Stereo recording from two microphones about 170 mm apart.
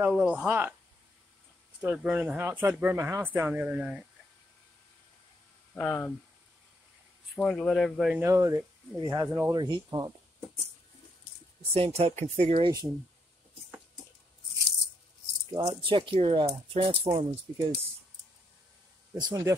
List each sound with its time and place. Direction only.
0.0 s speech: 5° right (ahead or behind)
1.8 s speech: 10° right (ahead or behind)
5.8 s speech: 10° left (ahead or behind)
7.3 s speech: 5° left (ahead or behind)
8.2 s speech: 20° right (ahead or behind)
9.6 s speech: 25° right (ahead or behind)
11.7 s speech: 35° right (ahead or behind)
15.5 s speech: 30° right (ahead or behind)
19.2 s speech: 20° right (ahead or behind)